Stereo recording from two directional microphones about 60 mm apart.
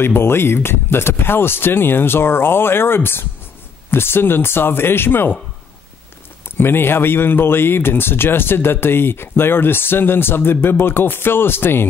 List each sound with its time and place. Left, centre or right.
0.0 s speech: left
6.5 s speech: left